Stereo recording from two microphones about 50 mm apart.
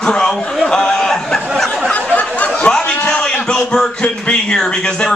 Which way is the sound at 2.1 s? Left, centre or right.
Left.